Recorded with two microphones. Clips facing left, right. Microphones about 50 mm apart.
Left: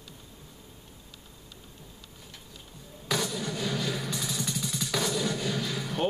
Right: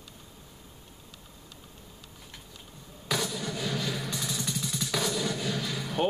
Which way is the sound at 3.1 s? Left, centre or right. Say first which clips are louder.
Left 1 dB; centre.